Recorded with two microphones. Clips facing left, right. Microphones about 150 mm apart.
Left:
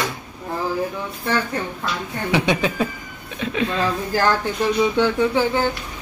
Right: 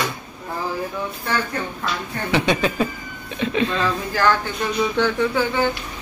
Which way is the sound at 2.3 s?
10° left (ahead or behind).